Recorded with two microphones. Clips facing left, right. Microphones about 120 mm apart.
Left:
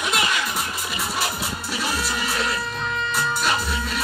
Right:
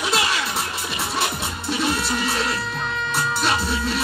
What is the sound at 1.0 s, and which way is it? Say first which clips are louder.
Music: right 2 dB; 25° right (ahead or behind).